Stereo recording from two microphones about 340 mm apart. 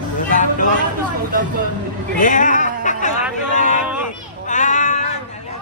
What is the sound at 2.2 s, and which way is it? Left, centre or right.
Speech, left.